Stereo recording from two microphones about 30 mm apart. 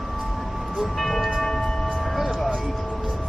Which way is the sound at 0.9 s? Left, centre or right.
Centre.